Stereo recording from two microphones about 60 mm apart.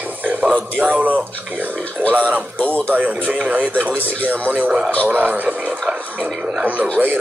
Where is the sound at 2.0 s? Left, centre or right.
Centre.